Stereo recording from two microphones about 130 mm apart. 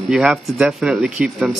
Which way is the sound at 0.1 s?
5° right (ahead or behind).